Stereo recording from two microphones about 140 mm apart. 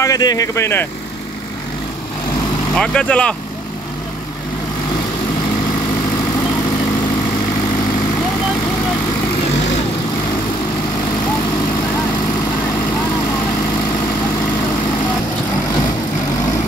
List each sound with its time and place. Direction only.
0.0 s speech: 25° left (ahead or behind)
2.7 s speech: 5° left (ahead or behind)